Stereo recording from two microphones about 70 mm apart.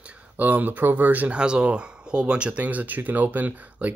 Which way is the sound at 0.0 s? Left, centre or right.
Centre.